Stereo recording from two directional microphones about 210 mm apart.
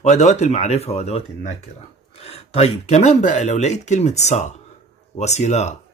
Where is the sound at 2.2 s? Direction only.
30° left (ahead or behind).